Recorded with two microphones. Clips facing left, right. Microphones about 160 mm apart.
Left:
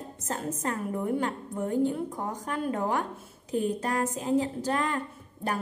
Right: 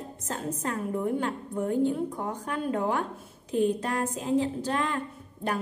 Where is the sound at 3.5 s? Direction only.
40° left (ahead or behind).